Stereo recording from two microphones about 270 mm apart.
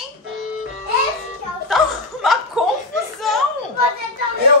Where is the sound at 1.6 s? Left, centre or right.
Centre.